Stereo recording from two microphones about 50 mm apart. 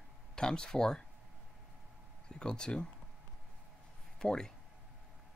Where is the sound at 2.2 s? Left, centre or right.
Centre.